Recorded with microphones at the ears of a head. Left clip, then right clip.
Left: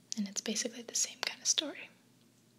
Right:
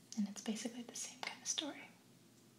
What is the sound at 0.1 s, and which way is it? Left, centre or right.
Speech, left.